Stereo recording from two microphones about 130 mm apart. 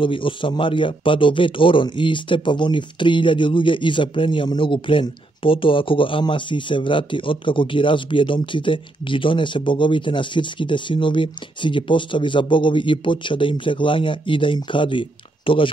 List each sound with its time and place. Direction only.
0.0 s a man's voice: 40° left (ahead or behind)